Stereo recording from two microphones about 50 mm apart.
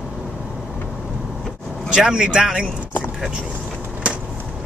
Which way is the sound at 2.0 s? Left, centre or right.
Centre.